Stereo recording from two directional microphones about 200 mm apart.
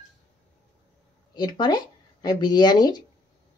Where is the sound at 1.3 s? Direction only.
20° left (ahead or behind).